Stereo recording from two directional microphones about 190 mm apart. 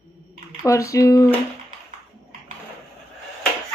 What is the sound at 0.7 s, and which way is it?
Speech, 15° left (ahead or behind).